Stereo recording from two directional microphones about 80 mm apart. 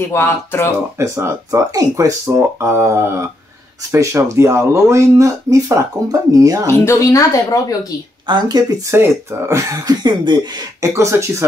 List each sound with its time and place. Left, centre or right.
0.0 s speech: left
0.9 s speech: right
1.5 s speech: right
6.7 s a woman's voice: left
8.3 s speech: right
8.9 s speech: right
9.8 s speech: right
10.8 s speech: right